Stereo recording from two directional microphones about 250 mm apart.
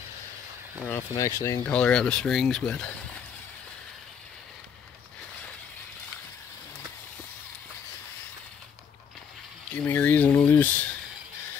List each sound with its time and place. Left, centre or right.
0.8 s speech: centre
9.8 s speech: centre